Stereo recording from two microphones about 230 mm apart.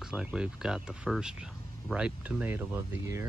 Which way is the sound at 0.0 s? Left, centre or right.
Centre.